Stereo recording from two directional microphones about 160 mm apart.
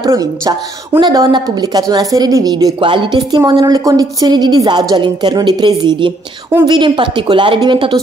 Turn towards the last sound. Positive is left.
turn(degrees=-30)  # may be behind; listen again after turning